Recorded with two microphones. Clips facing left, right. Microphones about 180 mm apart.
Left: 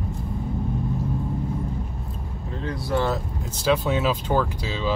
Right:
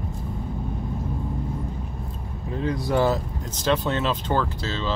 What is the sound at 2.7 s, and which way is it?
Speech, 15° right (ahead or behind).